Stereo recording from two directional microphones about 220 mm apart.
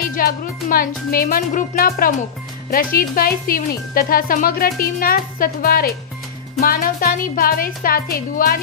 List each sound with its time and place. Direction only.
0.1 s speech: 40° left (ahead or behind)